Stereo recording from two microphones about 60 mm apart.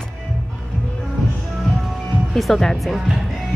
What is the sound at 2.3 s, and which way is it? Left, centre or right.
Speech, centre.